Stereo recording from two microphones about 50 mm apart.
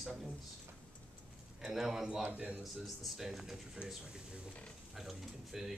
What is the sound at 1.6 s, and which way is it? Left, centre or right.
Speech, centre.